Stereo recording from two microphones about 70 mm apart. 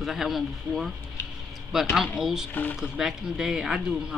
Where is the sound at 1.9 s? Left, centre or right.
Centre.